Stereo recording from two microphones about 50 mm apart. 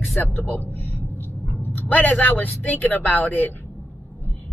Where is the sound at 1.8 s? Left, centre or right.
Left.